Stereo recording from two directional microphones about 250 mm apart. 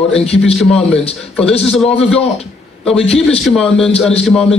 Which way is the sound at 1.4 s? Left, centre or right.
Left.